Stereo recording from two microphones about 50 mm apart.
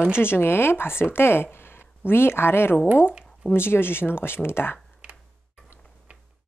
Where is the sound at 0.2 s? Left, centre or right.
Left.